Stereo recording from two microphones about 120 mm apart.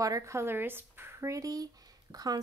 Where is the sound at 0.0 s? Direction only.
25° right (ahead or behind).